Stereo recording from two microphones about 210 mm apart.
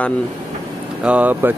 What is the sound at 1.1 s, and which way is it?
Speech, 10° right (ahead or behind).